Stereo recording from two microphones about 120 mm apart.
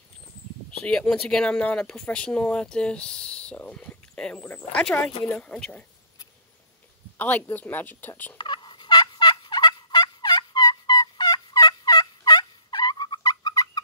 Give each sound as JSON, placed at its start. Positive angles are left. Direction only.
{"t": 0.7, "sound": "speech", "side_deg": 5}
{"t": 7.2, "sound": "speech", "side_deg": 15}
{"t": 8.4, "sound": "fowl", "side_deg": 40}